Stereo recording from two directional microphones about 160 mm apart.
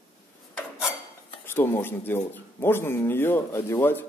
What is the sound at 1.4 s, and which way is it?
Speech, 15° left (ahead or behind).